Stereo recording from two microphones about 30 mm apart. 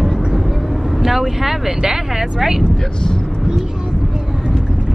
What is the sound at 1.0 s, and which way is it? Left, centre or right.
Speech, centre.